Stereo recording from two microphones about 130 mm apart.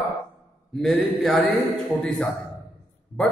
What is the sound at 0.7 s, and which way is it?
Mantra, 5° left (ahead or behind).